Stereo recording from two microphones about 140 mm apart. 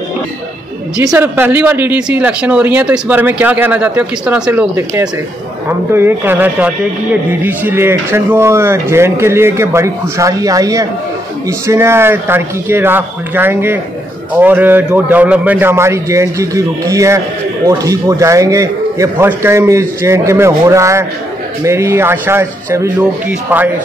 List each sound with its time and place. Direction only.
1.1 s a man's voice: 15° right (ahead or behind)